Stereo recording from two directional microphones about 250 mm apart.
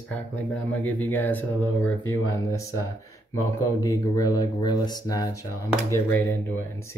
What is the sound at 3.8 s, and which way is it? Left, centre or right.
Speech, centre.